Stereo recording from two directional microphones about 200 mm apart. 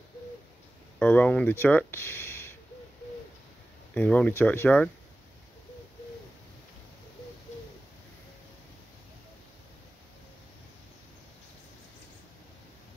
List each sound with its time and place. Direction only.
0.9 s speech: 5° left (ahead or behind)
3.9 s speech: 5° left (ahead or behind)